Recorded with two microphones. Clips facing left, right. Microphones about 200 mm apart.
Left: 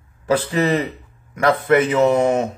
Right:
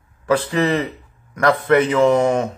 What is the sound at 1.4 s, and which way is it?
Music, 25° left (ahead or behind).